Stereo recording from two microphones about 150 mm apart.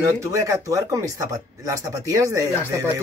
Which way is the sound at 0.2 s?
20° right (ahead or behind).